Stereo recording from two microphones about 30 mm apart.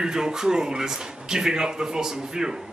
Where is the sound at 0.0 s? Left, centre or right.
Right.